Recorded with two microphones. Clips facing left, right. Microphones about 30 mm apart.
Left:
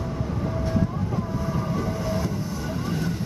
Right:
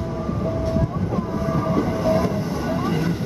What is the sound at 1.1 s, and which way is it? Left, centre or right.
Train, centre.